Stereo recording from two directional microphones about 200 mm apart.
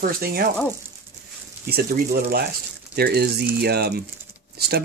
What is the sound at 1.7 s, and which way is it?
Speech, 50° right (ahead or behind).